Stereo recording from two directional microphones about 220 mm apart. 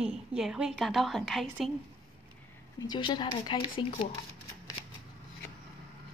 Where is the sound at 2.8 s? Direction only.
20° left (ahead or behind).